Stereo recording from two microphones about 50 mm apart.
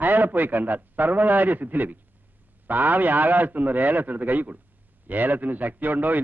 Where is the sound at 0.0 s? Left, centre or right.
Right.